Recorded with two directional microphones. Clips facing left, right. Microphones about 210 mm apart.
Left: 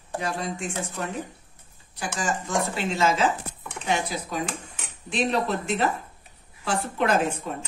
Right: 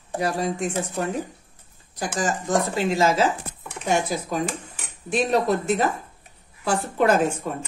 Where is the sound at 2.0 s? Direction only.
40° right (ahead or behind).